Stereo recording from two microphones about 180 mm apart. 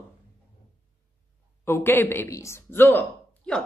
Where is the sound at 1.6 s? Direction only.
15° left (ahead or behind).